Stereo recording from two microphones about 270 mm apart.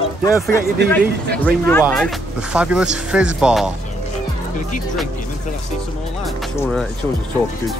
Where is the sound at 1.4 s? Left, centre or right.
Centre.